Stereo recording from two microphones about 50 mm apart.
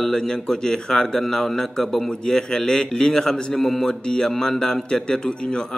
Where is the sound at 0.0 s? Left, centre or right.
Centre.